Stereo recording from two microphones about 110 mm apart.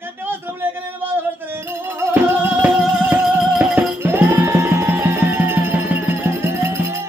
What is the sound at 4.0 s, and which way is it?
Music, 20° right (ahead or behind).